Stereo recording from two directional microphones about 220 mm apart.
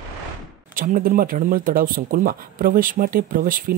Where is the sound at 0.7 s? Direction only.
40° right (ahead or behind).